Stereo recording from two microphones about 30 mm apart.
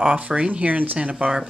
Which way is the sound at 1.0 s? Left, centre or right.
Right.